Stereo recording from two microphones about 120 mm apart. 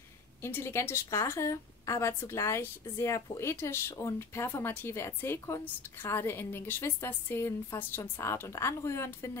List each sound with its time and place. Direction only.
0.4 s a woman's voice: 20° left (ahead or behind)